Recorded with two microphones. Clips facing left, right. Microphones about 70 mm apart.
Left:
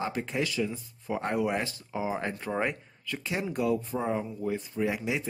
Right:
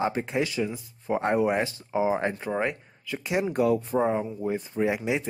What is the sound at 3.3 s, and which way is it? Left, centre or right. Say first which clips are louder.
Speech: right 6 dB; centre.